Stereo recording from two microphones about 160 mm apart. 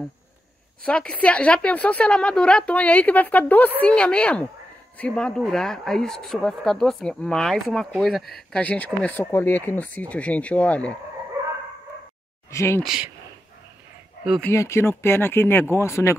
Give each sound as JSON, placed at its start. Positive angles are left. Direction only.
{"t": 0.8, "sound": "speech", "side_deg": 5}
{"t": 12.4, "sound": "speech", "side_deg": 15}
{"t": 12.8, "sound": "speech", "side_deg": -5}
{"t": 14.4, "sound": "speech", "side_deg": 15}